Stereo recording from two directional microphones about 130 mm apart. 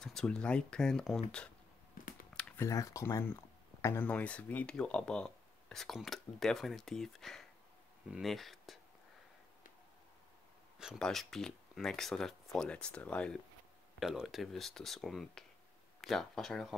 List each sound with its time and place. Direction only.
0.0 s speech: 5° left (ahead or behind)
2.3 s speech: 20° left (ahead or behind); by 8.7 s centre (ahead or behind)
10.8 s speech: centre (ahead or behind)
13.9 s speech: centre (ahead or behind)